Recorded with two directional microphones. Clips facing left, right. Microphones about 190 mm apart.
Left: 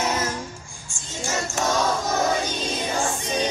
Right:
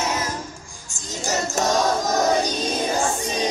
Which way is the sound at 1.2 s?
40° right (ahead or behind).